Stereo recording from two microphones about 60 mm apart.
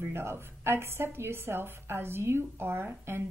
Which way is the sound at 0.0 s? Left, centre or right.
Right.